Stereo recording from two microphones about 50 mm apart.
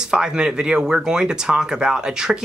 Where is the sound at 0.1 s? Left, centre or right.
Centre.